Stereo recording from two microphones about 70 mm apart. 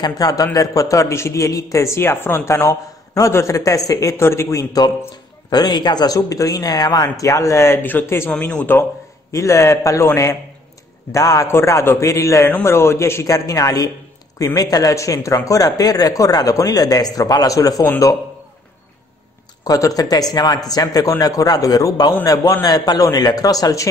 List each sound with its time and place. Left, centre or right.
0.0 s a man's voice: left
4.8 s speech: left
6.1 s a man's voice: left
7.6 s speech: left
8.3 s speech: centre
9.3 s a man's voice: left
11.1 s a man's voice: left
11.4 s a man's voice: left
19.6 s speech: left